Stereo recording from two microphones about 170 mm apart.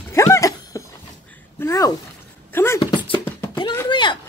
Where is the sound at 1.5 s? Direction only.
20° left (ahead or behind).